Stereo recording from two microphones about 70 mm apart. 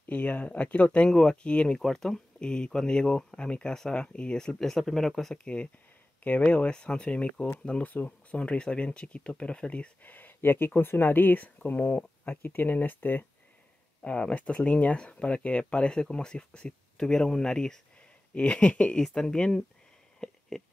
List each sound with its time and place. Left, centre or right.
0.1 s speech: left; by 5.4 s centre
5.4 s speech: centre
20.2 s a sound: centre